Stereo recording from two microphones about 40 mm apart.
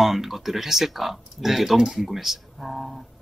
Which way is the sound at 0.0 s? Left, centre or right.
Centre.